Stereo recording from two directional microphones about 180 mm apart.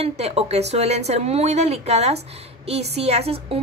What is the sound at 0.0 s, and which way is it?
A woman's voice, 35° right (ahead or behind).